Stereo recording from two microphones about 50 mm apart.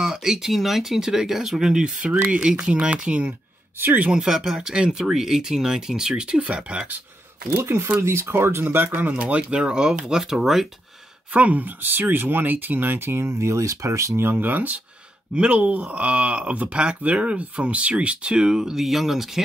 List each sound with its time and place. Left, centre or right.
0.0 s speech: centre
3.8 s speech: right
4.1 s speech: centre
7.5 s speech: right
8.6 s speech: right
9.2 s speech: right
9.6 s speech: centre
11.3 s speech: right
14.3 s speech: right
15.3 s speech: right; by 19.4 s centre